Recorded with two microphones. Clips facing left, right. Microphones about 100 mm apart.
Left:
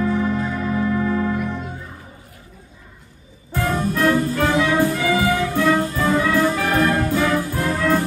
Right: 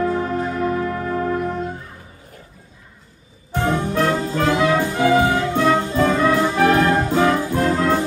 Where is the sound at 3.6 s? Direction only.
25° right (ahead or behind).